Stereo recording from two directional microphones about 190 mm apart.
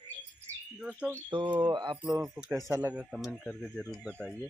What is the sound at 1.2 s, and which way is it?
Speech, 25° right (ahead or behind).